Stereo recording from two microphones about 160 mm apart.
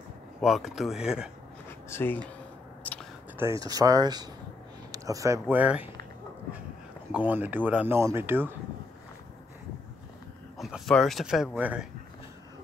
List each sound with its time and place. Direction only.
0.4 s speech: centre (ahead or behind)
1.7 s a sound: 15° left (ahead or behind)
3.3 s speech: 20° right (ahead or behind)
7.1 s speech: 10° right (ahead or behind)
10.6 s speech: centre (ahead or behind)